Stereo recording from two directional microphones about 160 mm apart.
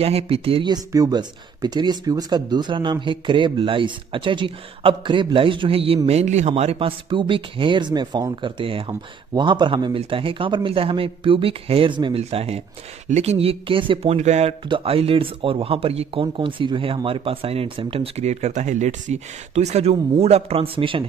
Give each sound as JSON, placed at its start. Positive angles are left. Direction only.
{"t": 0.0, "sound": "speech", "side_deg": -35}
{"t": 14.1, "sound": "speech", "side_deg": -45}